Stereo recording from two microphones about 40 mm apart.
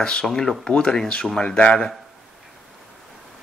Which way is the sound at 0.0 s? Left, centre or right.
Centre.